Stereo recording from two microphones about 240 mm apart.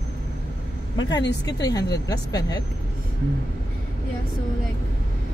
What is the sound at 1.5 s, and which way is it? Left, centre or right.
Speech, centre.